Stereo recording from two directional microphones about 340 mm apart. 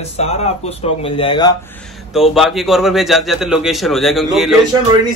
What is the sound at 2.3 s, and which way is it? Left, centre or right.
A man's voice, centre.